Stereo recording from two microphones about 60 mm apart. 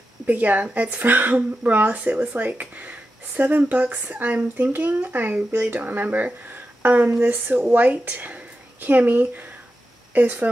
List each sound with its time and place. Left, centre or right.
0.3 s speech: right